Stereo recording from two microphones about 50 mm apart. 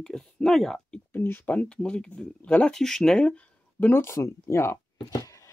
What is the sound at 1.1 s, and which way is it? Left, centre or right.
Speech, left.